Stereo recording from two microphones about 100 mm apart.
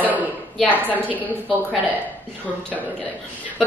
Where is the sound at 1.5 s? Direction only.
15° right (ahead or behind).